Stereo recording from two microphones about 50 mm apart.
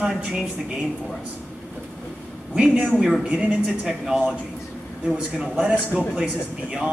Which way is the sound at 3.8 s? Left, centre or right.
Centre.